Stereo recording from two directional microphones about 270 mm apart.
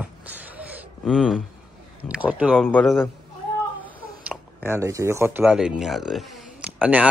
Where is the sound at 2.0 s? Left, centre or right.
Centre.